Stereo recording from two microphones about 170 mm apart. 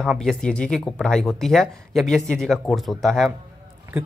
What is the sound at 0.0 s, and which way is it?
Speech, centre (ahead or behind).